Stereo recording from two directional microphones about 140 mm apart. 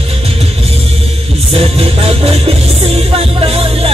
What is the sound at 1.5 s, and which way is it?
Music, 45° right (ahead or behind).